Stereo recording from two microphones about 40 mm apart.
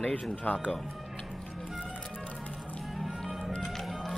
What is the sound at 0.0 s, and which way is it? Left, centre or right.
Speech, left.